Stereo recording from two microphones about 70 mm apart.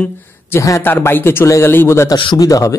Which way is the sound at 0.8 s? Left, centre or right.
Left.